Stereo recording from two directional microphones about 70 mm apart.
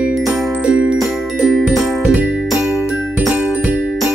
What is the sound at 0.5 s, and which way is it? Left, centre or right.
Music, centre.